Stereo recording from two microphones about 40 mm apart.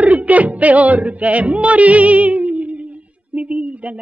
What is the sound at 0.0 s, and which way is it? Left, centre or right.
Music, right.